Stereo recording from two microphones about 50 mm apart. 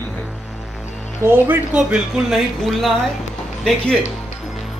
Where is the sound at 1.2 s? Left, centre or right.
Right.